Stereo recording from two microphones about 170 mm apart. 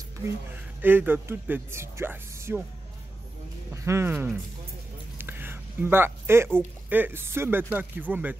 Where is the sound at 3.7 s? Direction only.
15° right (ahead or behind).